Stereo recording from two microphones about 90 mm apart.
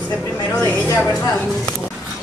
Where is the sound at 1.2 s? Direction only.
40° left (ahead or behind).